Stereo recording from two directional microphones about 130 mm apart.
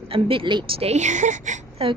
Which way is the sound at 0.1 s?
40° right (ahead or behind).